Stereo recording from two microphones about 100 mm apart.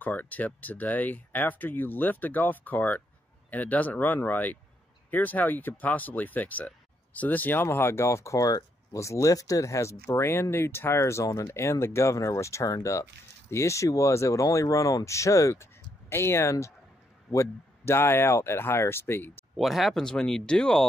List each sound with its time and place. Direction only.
0.0 s speech: 15° left (ahead or behind)
19.5 s speech: centre (ahead or behind)